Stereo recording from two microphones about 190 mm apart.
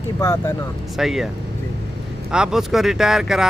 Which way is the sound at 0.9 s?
Centre (ahead or behind).